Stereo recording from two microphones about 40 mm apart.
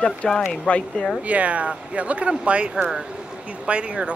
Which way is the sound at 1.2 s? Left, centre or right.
Right.